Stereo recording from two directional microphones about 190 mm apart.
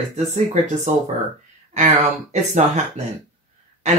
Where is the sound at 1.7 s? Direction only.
35° right (ahead or behind).